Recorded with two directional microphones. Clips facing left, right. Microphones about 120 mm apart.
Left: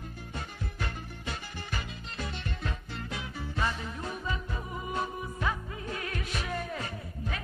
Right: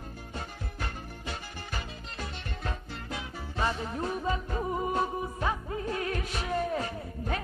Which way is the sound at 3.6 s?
35° right (ahead or behind).